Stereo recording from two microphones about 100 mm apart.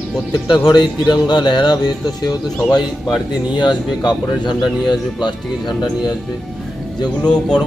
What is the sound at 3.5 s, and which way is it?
Speech, 50° left (ahead or behind).